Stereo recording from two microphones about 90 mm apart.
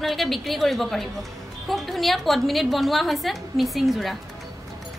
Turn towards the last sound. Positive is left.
turn(degrees=0)  # may be behind; listen again after turning